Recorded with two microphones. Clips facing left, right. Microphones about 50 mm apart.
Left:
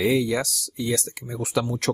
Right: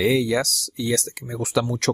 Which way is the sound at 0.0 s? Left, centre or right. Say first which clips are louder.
Right 2 dB; right.